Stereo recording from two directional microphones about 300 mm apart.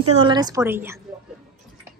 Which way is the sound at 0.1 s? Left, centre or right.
Centre.